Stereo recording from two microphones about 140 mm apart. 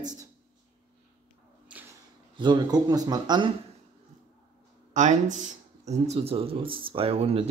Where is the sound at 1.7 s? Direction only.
10° right (ahead or behind).